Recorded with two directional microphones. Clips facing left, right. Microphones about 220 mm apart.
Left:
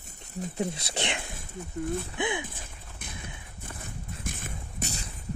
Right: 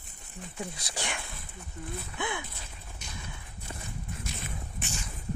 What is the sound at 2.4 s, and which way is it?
Horse, 50° left (ahead or behind).